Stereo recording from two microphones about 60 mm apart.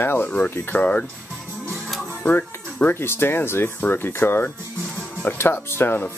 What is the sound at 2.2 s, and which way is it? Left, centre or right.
Music, left.